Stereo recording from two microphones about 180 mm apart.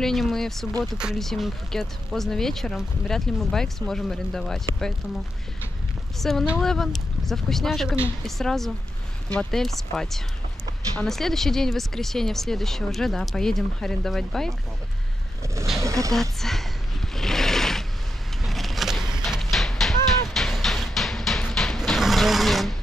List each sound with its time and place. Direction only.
0.0 s speech: centre (ahead or behind)
6.1 s speech: centre (ahead or behind)
15.8 s vehicle: 15° right (ahead or behind)
16.1 s speech: centre (ahead or behind)
17.1 s a sound: centre (ahead or behind)
18.4 s vehicle: centre (ahead or behind)
19.2 s a sound: centre (ahead or behind)